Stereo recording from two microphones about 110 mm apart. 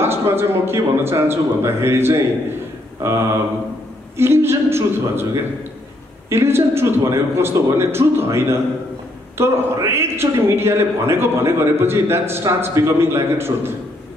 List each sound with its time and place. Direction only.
0.0 s a man's voice: 20° right (ahead or behind)
4.2 s a man's voice: 25° right (ahead or behind)